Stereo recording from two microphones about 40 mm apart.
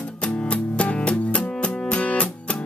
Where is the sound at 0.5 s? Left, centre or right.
Left.